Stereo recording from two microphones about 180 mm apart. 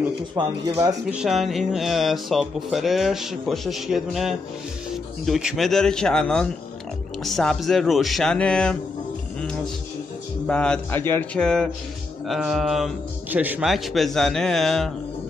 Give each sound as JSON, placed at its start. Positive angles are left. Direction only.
{"t": 0.4, "sound": "speech", "side_deg": -25}
{"t": 1.0, "sound": "speech", "side_deg": -5}
{"t": 10.4, "sound": "speech", "side_deg": 5}